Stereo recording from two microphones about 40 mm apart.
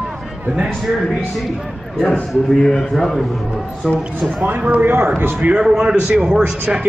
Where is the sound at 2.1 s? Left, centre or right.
Centre.